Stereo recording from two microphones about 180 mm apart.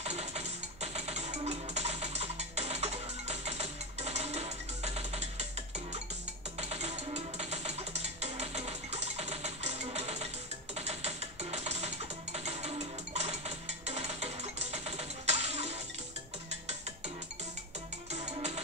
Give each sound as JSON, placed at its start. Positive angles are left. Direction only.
{"t": 0.0, "sound": "music", "side_deg": -35}
{"t": 6.6, "sound": "music", "side_deg": -35}
{"t": 18.1, "sound": "music", "side_deg": -35}